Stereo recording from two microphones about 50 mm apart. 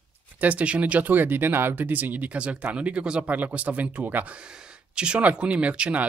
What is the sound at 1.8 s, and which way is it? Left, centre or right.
Speech, right.